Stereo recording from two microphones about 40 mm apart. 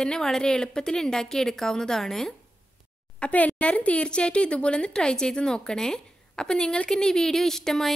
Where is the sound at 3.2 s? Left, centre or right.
Left.